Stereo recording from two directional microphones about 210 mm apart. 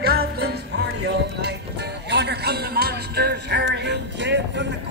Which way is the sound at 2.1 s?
50° right (ahead or behind).